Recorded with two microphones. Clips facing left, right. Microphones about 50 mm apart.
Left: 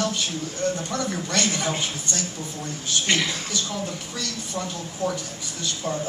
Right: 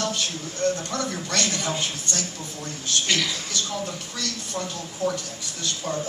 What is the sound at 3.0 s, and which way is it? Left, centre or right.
Speech, left.